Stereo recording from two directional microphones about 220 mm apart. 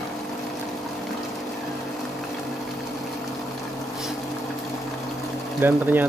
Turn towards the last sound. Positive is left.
turn(degrees=-10)  # may be behind; listen again after turning